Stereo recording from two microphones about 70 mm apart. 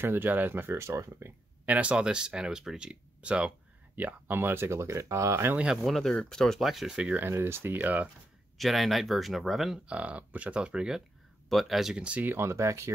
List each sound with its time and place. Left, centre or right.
0.0 s speech: right
1.7 s speech: centre; by 5.5 s right
5.9 s speech: centre
7.2 s speech: right
8.5 s speech: centre
9.8 s speech: centre
11.4 s speech: centre
12.0 s speech: centre
12.3 s speech: right